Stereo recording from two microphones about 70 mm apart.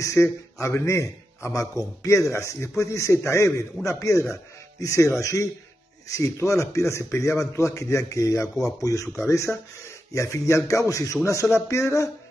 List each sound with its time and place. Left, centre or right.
0.0 s speech: left